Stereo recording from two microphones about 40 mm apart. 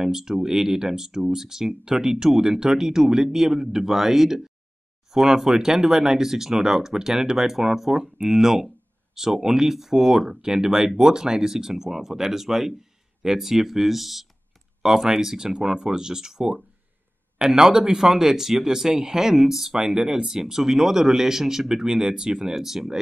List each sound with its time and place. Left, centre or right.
0.0 s speech: centre